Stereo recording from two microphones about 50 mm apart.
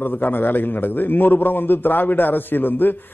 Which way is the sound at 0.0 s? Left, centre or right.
Left.